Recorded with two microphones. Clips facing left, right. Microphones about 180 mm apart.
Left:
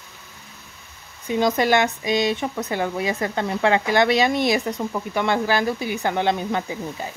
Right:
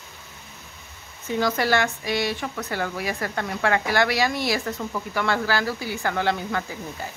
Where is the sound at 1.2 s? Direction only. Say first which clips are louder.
Left 4 dB; 20° left (ahead or behind).